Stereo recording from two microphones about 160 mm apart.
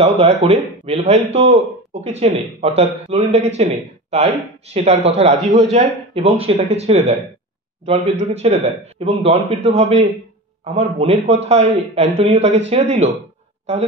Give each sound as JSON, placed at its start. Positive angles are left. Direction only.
{"t": 0.0, "sound": "speech", "side_deg": -40}